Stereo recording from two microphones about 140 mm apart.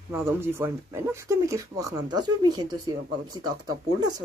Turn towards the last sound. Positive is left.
turn(degrees=-30)  # may be behind; listen again after turning